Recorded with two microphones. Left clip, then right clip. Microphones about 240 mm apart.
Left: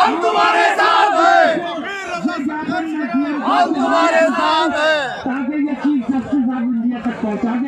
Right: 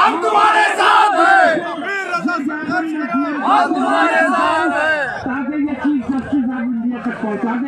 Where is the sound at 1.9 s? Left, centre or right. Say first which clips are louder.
Right 3 dB; centre.